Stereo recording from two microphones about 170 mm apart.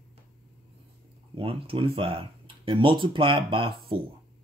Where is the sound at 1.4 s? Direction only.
35° right (ahead or behind).